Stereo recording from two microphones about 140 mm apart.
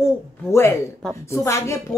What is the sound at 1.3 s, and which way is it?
Speech, 20° left (ahead or behind).